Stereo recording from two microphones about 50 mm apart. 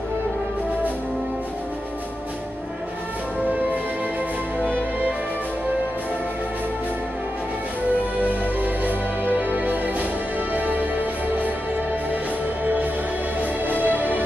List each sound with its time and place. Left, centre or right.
8.2 s music: right
13.4 s music: right